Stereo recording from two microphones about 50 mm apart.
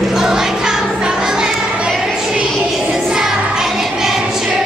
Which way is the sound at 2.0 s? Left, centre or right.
Centre.